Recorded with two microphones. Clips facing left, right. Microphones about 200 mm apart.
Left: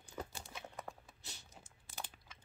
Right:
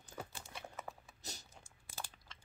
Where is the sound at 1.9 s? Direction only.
15° left (ahead or behind).